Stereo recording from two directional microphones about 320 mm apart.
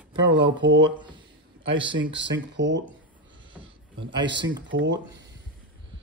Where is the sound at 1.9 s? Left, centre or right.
Right.